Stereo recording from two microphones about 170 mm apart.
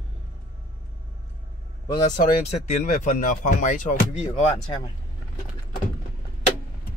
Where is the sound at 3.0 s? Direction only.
50° left (ahead or behind).